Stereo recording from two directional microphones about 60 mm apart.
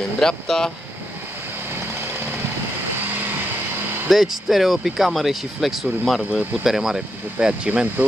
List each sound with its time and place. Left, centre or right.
0.2 s speech: centre
4.1 s speech: centre
7.3 s speech: centre